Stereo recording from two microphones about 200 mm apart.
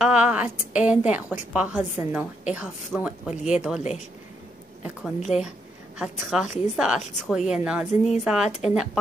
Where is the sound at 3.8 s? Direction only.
35° left (ahead or behind).